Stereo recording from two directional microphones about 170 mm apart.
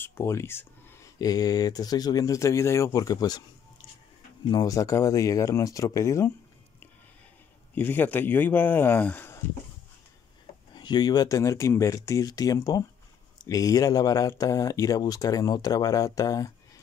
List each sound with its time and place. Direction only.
0.0 s speech: 15° left (ahead or behind)
4.5 s speech: 20° left (ahead or behind)
7.7 s speech: 10° left (ahead or behind)
10.7 s speech: 25° left (ahead or behind)